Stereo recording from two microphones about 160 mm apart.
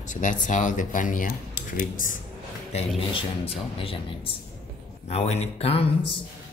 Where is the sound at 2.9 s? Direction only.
35° left (ahead or behind).